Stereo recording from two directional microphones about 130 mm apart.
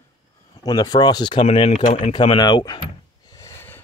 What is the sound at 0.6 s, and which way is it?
Speech, 30° left (ahead or behind).